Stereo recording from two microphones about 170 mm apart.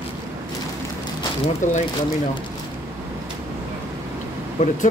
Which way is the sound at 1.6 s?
45° left (ahead or behind).